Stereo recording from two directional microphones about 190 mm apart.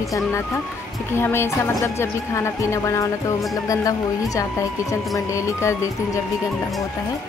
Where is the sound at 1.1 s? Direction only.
15° left (ahead or behind).